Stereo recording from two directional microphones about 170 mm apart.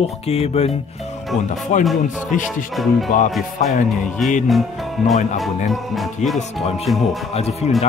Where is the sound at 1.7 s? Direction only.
45° left (ahead or behind).